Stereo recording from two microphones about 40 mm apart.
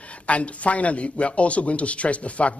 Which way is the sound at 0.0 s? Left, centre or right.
Left.